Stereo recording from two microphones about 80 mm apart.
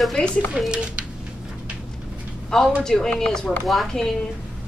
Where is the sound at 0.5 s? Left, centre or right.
Centre.